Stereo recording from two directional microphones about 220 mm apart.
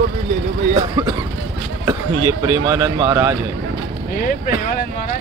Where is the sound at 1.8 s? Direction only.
15° right (ahead or behind).